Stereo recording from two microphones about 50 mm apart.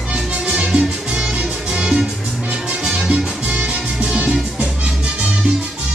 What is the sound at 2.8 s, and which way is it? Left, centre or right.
Salsa music, centre.